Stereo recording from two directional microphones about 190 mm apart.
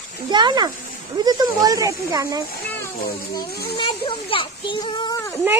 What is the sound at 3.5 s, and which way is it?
Speech, 55° left (ahead or behind).